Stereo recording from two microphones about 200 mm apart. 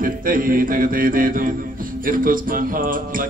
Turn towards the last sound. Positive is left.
turn(degrees=-45)  # may be behind; listen again after turning